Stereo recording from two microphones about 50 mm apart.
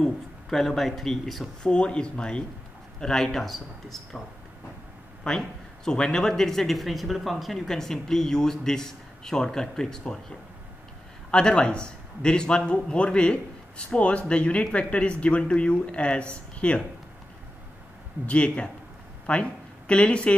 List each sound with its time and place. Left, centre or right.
0.0 s speech: centre
1.6 s a man's voice: centre
5.9 s speech: centre
11.2 s a man's voice: centre
18.2 s a man's voice: left